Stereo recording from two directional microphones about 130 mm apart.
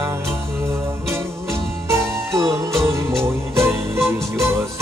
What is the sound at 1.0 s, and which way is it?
Music, 20° right (ahead or behind).